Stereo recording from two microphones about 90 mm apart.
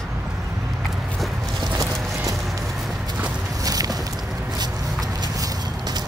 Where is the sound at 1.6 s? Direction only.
45° right (ahead or behind).